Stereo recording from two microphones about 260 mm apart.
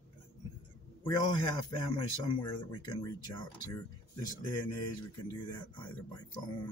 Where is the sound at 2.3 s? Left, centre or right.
Centre.